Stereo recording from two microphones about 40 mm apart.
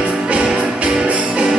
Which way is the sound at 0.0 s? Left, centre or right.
Centre.